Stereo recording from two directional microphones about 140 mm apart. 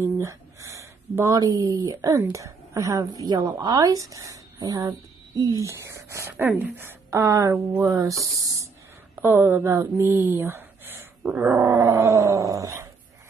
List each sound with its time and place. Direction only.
0.0 s speech: 20° right (ahead or behind)
8.2 s dog: 25° right (ahead or behind)
9.1 s speech: 15° right (ahead or behind)
10.3 s a sound: 15° right (ahead or behind)
11.5 s dog: 25° right (ahead or behind)